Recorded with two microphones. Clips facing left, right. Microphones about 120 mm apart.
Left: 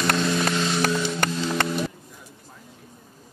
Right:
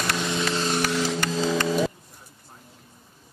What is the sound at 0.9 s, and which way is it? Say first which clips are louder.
Vehicle: even; 90° right.